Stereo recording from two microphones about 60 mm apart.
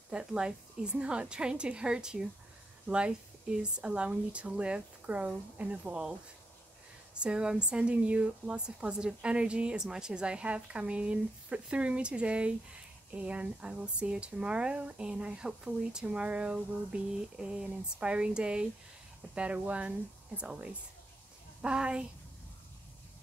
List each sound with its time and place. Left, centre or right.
0.1 s speech: centre
7.2 s speech: centre